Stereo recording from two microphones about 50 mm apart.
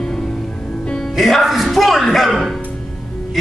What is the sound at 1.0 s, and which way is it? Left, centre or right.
A man's voice, centre.